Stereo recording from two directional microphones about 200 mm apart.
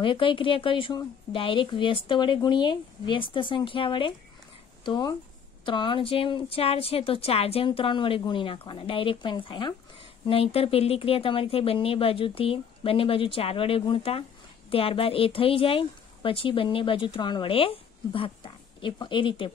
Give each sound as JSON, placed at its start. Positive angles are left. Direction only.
{"t": 0.0, "sound": "a woman's voice", "side_deg": 25}